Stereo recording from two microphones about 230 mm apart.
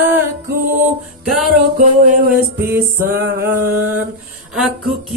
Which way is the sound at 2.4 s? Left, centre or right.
Centre.